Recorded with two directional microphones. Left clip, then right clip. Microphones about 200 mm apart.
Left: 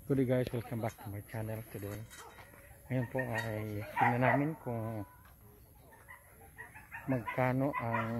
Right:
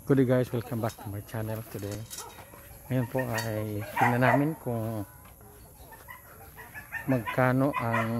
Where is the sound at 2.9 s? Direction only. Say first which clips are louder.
Right 6 dB; 5° right (ahead or behind).